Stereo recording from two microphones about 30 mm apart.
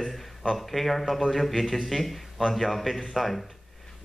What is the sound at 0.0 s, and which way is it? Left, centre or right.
A man's voice, centre.